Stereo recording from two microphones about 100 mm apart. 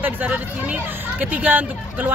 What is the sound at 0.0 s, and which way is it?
A woman's voice, 15° right (ahead or behind).